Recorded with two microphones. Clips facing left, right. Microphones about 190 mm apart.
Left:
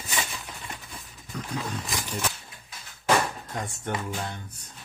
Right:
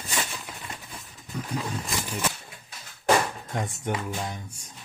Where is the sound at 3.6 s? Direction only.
15° right (ahead or behind).